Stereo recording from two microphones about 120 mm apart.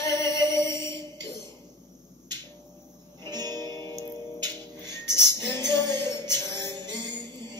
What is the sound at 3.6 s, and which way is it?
Music, 25° left (ahead or behind).